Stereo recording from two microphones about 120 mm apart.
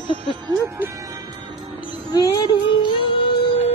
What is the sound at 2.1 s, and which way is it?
Child singing, 35° left (ahead or behind).